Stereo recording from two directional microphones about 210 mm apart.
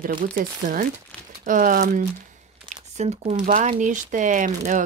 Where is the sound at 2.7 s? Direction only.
35° right (ahead or behind).